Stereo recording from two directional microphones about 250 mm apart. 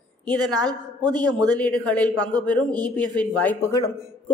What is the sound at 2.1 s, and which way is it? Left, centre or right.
Speech, centre.